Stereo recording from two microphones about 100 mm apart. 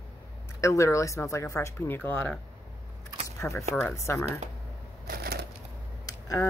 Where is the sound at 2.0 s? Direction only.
15° left (ahead or behind).